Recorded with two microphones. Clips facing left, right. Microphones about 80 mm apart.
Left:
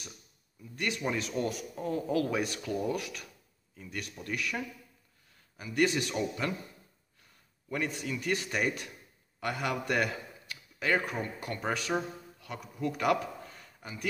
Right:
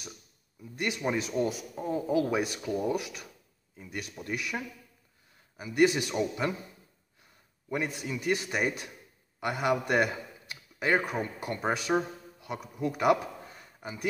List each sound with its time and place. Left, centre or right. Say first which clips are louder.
0.7 s a man's voice: right 2 dB; centre
7.7 s a man's voice: right 1 dB; centre